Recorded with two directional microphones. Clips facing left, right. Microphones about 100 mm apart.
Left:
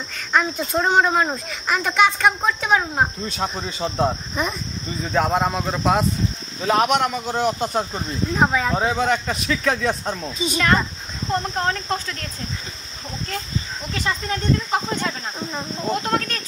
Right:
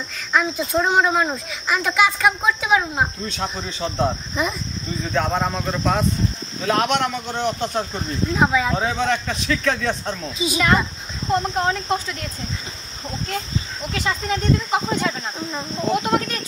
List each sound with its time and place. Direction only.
0.3 s speech: centre (ahead or behind)
15.9 s speech: 10° right (ahead or behind)